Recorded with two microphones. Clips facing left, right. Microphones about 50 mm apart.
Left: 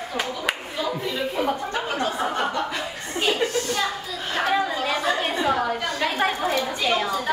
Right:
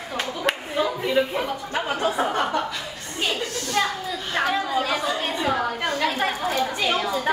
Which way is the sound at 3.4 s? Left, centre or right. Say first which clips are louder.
Left 6 dB; left.